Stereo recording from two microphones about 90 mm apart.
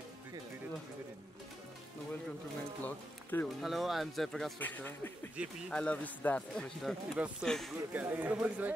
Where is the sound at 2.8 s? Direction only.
20° left (ahead or behind).